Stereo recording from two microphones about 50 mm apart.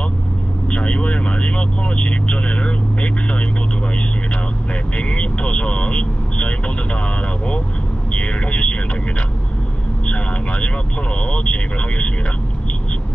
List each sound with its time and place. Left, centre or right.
0.7 s speech: left
4.9 s speech: left
8.1 s a sound: left
10.0 s speech: left